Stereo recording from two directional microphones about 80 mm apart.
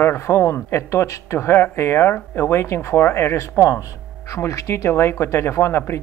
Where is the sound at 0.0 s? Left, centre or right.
Left.